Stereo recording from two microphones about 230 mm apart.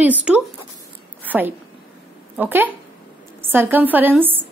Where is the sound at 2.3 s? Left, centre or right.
Centre.